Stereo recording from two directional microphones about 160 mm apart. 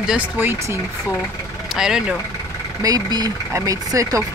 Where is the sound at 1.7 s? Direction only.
5° right (ahead or behind).